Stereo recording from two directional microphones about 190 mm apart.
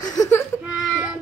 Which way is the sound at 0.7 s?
5° right (ahead or behind).